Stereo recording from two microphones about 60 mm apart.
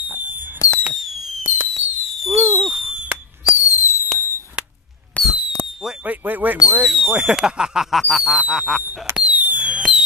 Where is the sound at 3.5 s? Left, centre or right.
Left.